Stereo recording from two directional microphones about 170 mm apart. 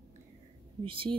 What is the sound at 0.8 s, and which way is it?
Speech, 30° right (ahead or behind).